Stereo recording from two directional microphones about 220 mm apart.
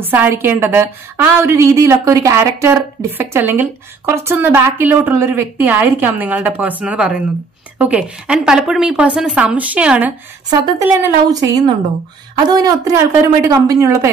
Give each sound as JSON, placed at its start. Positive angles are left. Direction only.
{"t": 0.0, "sound": "a woman's voice", "side_deg": -10}
{"t": 11.2, "sound": "a woman's voice", "side_deg": -15}